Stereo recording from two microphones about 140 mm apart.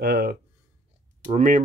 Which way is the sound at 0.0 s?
90° right.